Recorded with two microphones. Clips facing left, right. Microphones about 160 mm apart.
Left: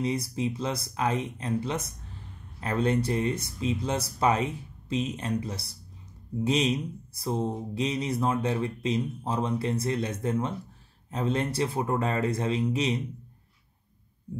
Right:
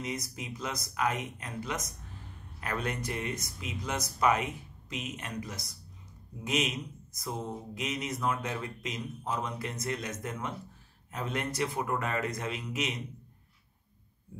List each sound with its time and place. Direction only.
0.0 s speech: 30° left (ahead or behind)